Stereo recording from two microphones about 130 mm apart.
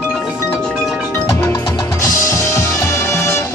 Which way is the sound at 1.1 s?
20° left (ahead or behind).